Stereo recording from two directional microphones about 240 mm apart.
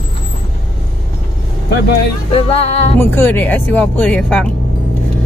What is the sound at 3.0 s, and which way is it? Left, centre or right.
Speech, centre.